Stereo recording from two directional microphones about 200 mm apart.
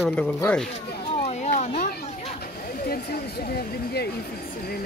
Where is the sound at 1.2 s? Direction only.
35° left (ahead or behind).